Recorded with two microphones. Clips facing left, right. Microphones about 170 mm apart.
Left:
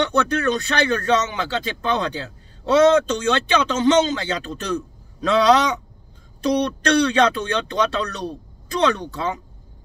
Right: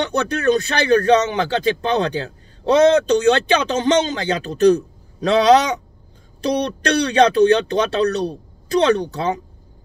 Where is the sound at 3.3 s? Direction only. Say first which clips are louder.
Right 2 dB; 45° right (ahead or behind).